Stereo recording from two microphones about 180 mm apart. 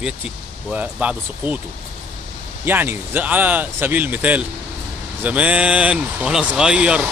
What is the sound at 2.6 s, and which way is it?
Speech, 10° right (ahead or behind).